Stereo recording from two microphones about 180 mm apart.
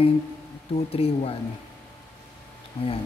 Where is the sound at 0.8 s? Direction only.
35° left (ahead or behind).